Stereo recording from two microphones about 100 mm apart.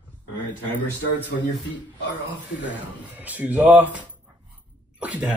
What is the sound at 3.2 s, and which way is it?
Speech, 15° right (ahead or behind).